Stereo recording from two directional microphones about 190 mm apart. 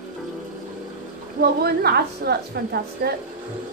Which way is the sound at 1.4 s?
55° right (ahead or behind).